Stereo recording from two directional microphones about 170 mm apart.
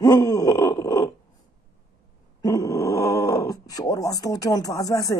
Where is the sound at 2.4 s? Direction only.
20° left (ahead or behind).